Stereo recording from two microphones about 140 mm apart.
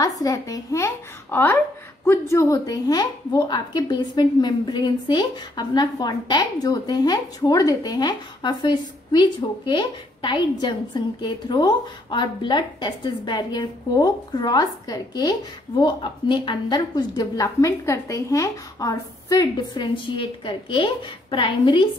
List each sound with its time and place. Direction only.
0.2 s a woman's voice: 25° left (ahead or behind)